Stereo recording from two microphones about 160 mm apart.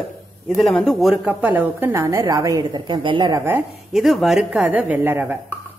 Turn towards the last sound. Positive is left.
turn(degrees=-10)  # may be behind; listen again after turning